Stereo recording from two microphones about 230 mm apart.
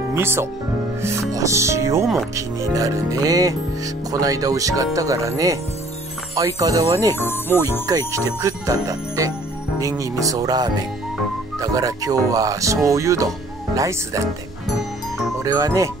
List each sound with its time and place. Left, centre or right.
0.1 s speech: centre
7.2 s speech: centre
8.1 s speech: centre
15.4 s speech: centre